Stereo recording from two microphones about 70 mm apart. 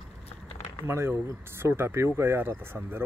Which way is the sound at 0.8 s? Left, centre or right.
Right.